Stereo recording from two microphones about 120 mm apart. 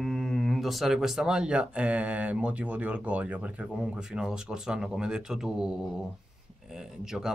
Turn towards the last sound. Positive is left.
turn(degrees=-5)  # may be behind; listen again after turning